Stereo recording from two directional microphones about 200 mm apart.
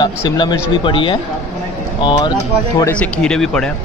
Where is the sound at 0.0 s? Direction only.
20° left (ahead or behind).